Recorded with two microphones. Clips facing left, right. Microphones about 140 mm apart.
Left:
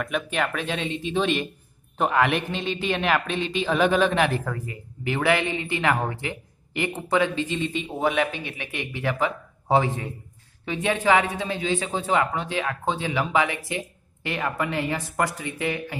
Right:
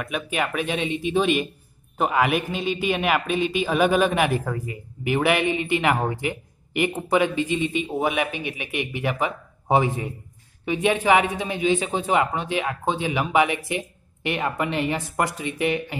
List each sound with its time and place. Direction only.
0.0 s a man's voice: 10° right (ahead or behind)